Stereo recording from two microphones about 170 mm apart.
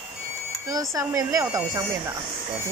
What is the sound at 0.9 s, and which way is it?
Speech, 20° right (ahead or behind).